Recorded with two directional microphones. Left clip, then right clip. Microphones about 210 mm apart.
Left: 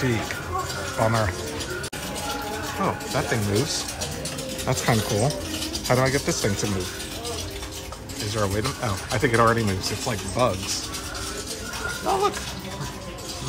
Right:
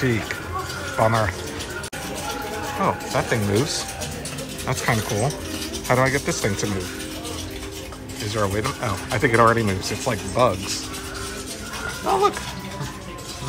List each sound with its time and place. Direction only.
0.9 s speech: 10° left (ahead or behind)
2.8 s speech: 10° left (ahead or behind)
8.4 s speech: 10° left (ahead or behind)
12.0 s a sound: 10° left (ahead or behind)